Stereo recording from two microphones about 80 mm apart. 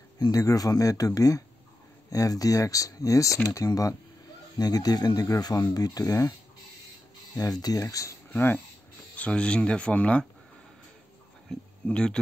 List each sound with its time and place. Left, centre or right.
0.2 s speech: left
7.3 s speech: left
8.3 s speech: left
9.1 s speech: centre
11.5 s speech: centre